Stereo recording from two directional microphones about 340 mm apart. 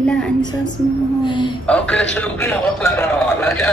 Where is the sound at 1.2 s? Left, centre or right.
Centre.